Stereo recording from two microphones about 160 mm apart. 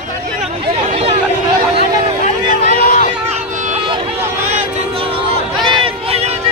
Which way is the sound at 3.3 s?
50° right (ahead or behind).